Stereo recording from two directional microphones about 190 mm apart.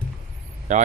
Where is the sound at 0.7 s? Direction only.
40° right (ahead or behind).